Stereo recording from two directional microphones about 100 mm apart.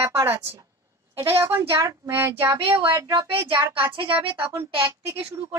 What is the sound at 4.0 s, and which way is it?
Speech, 60° right (ahead or behind).